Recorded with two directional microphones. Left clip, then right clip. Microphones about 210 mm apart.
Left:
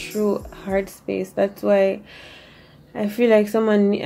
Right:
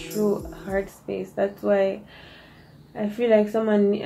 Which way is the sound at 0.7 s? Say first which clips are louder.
Left 4 dB; 45° left (ahead or behind).